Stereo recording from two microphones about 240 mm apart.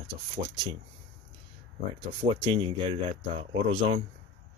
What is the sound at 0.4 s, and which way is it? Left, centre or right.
Speech, right.